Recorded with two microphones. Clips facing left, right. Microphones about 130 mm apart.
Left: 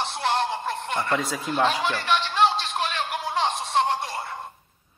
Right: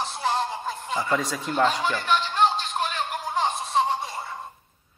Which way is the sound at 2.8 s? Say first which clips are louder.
Left 1 dB; 90° left.